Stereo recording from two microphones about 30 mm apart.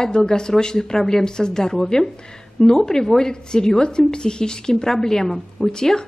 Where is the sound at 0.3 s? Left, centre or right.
Left.